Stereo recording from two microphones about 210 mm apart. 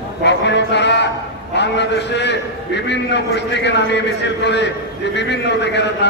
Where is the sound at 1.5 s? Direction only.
55° left (ahead or behind).